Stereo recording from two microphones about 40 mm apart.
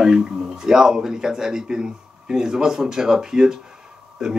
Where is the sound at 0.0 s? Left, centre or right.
Centre.